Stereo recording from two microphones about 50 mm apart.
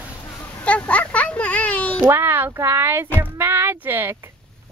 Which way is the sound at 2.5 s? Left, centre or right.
Right.